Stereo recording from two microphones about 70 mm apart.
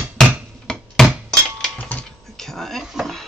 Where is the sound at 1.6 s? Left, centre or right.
Centre.